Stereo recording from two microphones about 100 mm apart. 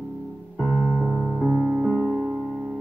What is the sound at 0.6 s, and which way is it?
Piano, centre (ahead or behind).